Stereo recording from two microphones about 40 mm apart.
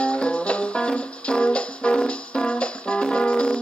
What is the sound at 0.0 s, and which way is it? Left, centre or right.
Music, left.